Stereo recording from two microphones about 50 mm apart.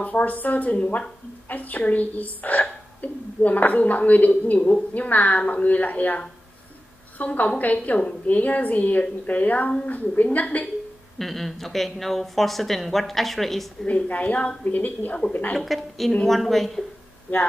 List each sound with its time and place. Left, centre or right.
0.0 s a woman's voice: left
11.1 s speech: centre
13.8 s a woman's voice: left
15.5 s speech: centre